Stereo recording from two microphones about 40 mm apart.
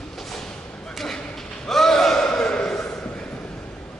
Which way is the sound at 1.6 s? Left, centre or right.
Centre.